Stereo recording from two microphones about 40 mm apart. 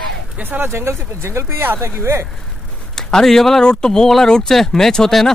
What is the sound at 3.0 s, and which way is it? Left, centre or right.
Speech, centre.